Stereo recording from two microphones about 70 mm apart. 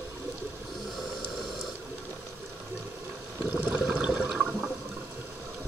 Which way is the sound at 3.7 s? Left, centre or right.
Centre.